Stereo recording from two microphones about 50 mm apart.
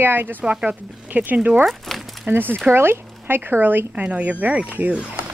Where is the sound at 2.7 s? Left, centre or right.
Right.